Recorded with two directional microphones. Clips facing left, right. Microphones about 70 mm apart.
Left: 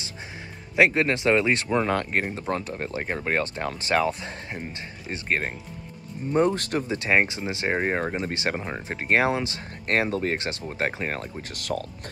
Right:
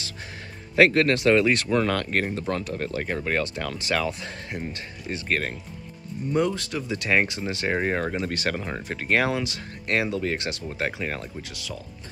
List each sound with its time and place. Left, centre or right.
0.7 s speech: centre
6.3 s speech: left
6.9 s speech: left
11.5 s speech: left